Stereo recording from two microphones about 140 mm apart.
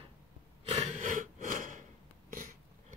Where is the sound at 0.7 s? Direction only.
55° right (ahead or behind).